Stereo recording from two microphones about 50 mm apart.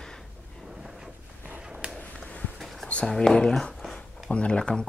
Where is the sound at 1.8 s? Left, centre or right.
Right.